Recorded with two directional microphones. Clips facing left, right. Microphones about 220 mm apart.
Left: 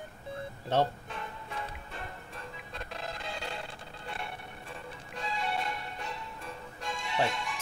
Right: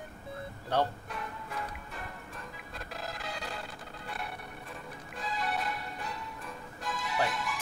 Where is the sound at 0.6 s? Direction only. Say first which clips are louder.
Left 2 dB; 25° left (ahead or behind).